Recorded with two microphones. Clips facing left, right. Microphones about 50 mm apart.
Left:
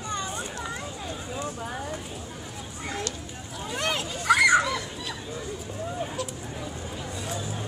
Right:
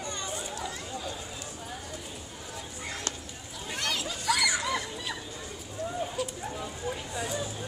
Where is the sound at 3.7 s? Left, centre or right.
Left.